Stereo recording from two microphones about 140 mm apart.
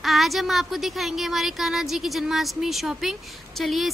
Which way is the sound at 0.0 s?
Centre (ahead or behind).